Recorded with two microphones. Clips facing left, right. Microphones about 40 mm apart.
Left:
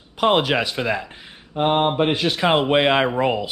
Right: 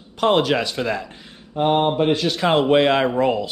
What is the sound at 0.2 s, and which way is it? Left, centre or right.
Speech, centre.